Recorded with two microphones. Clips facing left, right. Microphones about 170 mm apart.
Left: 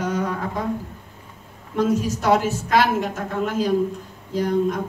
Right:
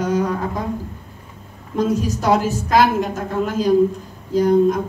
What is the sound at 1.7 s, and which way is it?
A woman's voice, 35° right (ahead or behind).